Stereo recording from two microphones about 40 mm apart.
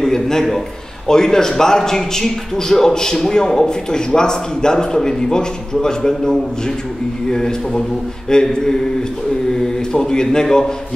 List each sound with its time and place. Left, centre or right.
0.0 s speech: centre